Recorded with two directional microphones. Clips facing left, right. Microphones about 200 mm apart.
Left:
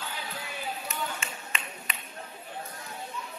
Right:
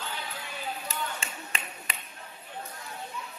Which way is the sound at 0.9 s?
35° right (ahead or behind).